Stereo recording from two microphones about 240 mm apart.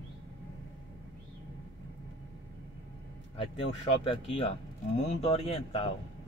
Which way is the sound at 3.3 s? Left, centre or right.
Left.